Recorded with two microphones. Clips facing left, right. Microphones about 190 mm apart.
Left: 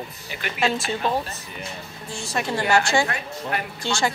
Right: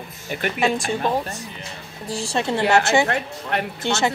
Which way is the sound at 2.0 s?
35° right (ahead or behind).